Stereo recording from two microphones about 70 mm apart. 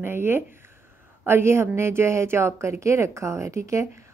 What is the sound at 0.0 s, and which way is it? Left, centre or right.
A woman's voice, right.